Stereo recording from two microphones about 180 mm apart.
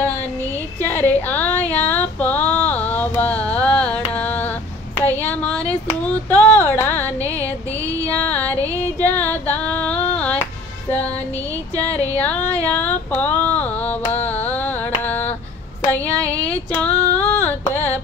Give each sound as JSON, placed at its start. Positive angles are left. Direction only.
{"t": 0.8, "sound": "female singing", "side_deg": 10}
{"t": 4.9, "sound": "a sound", "side_deg": 10}
{"t": 7.2, "sound": "music", "side_deg": 10}
{"t": 8.7, "sound": "a sound", "side_deg": 10}
{"t": 11.8, "sound": "music", "side_deg": 10}
{"t": 12.6, "sound": "carnatic music", "side_deg": 10}
{"t": 16.3, "sound": "female singing", "side_deg": 10}